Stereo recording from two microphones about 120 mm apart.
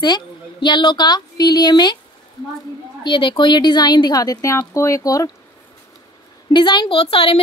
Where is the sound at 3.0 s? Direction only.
40° left (ahead or behind).